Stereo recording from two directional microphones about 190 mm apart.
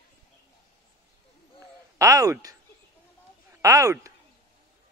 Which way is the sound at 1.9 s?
15° right (ahead or behind).